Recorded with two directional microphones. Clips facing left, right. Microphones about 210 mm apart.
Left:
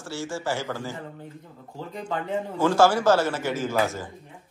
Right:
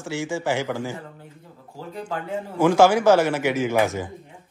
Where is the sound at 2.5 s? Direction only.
15° right (ahead or behind).